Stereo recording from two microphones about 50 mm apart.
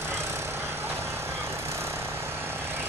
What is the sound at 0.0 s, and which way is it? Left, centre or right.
Vehicle, right.